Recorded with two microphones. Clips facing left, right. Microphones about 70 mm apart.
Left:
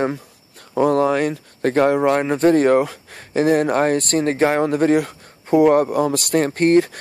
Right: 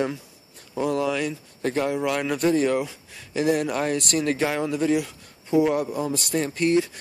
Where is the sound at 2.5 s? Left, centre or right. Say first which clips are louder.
Left 7 dB; left.